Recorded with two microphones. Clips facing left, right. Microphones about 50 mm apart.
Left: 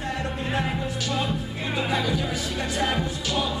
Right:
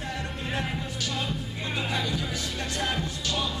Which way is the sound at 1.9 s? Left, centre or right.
Centre.